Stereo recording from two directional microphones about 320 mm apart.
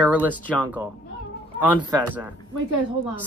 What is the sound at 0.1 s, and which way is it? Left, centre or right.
Speech, centre.